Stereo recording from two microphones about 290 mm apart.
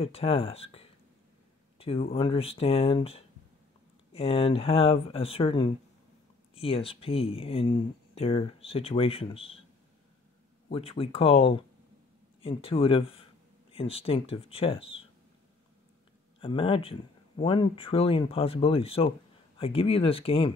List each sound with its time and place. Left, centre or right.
0.0 s speech: centre
10.7 s speech: centre
16.3 s speech: centre